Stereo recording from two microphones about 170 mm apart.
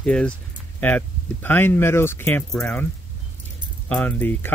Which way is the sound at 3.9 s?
10° left (ahead or behind).